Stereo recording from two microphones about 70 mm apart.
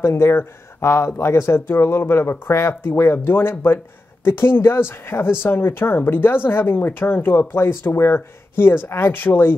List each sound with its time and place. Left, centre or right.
0.0 s speech: left